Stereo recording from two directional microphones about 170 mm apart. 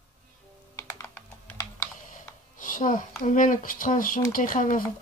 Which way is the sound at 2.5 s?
50° left (ahead or behind).